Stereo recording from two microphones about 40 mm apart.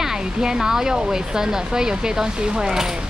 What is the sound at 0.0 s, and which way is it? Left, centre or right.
Speech, centre.